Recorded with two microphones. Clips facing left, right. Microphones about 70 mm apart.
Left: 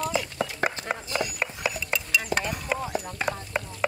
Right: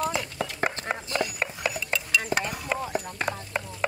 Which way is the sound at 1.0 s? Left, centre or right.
Centre.